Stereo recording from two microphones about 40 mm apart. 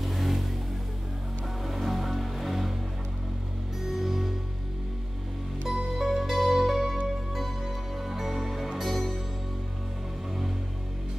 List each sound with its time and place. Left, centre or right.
0.0 s vehicle: centre
1.6 s music: centre
3.8 s music: centre
5.7 s music: centre